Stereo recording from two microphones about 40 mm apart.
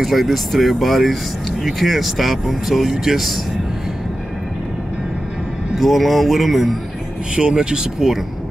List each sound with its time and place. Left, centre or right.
0.0 s speech: centre
5.8 s speech: centre
7.3 s speech: centre